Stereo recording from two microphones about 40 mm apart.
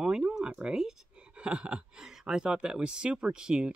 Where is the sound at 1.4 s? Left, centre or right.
Right.